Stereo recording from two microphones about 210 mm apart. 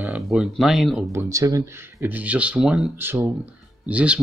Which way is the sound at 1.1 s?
15° right (ahead or behind).